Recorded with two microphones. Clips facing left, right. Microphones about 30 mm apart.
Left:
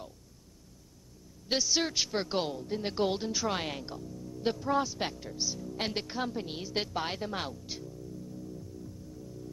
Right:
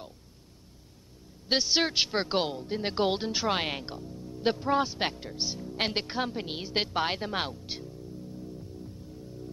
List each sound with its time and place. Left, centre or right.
1.5 s a man's voice: right